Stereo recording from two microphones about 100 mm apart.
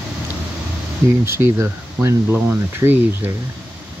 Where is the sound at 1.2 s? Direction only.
25° right (ahead or behind).